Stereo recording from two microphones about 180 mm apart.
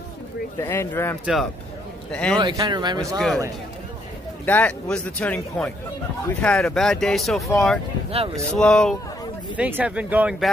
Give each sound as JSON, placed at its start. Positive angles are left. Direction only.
{"t": 0.6, "sound": "a man's voice", "side_deg": 15}
{"t": 1.2, "sound": "a man's voice", "side_deg": 0}
{"t": 2.3, "sound": "speech", "side_deg": -20}
{"t": 4.5, "sound": "a man's voice", "side_deg": 10}
{"t": 8.1, "sound": "speech", "side_deg": -35}
{"t": 8.5, "sound": "speech", "side_deg": 5}
{"t": 9.6, "sound": "speech", "side_deg": -10}